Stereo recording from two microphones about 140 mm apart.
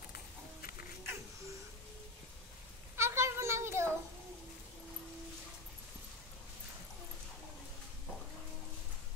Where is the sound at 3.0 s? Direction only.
20° right (ahead or behind).